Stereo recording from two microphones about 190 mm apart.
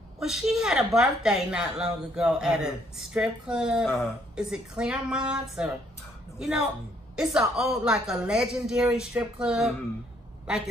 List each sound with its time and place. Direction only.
0.2 s a woman's voice: centre (ahead or behind)
7.2 s a woman's voice: centre (ahead or behind)